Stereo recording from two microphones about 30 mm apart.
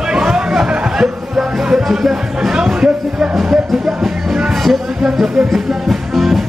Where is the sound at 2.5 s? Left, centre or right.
Right.